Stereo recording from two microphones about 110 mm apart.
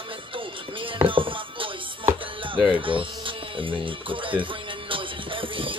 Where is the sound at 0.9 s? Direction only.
50° right (ahead or behind).